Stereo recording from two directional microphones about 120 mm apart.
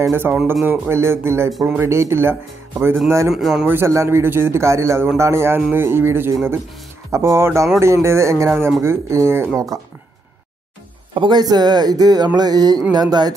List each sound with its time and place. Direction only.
0.0 s a man's voice: 20° right (ahead or behind)
1.5 s speech: centre (ahead or behind)
1.8 s a man's voice: 20° right (ahead or behind)
3.3 s speech: 5° right (ahead or behind)
3.6 s a man's voice: 20° right (ahead or behind)
11.1 s speech: 35° right (ahead or behind)